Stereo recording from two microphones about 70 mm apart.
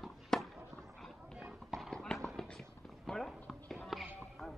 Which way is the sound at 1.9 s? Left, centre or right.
Centre.